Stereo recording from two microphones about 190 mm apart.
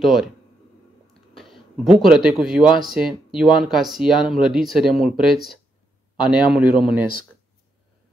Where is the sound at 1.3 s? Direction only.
Centre (ahead or behind).